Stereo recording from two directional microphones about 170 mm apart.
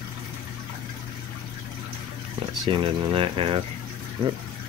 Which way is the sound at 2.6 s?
25° right (ahead or behind).